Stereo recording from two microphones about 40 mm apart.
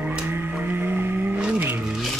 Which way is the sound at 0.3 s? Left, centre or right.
Right.